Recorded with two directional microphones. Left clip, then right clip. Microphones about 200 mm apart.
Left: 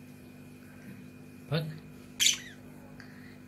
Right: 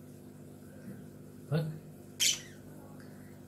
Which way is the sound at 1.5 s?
20° left (ahead or behind).